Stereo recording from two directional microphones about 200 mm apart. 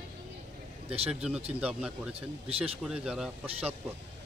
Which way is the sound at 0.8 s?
30° right (ahead or behind).